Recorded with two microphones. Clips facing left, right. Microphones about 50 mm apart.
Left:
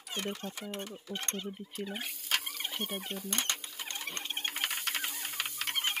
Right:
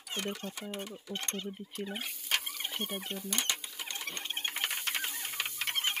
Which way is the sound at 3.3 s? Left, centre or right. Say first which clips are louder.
Even; left.